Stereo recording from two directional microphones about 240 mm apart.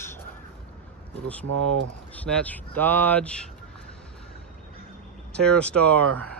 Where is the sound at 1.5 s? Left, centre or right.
Right.